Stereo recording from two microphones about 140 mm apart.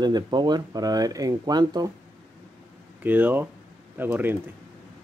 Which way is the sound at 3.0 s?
15° right (ahead or behind).